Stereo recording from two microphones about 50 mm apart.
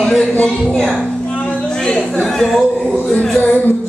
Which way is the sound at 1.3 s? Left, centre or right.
Left.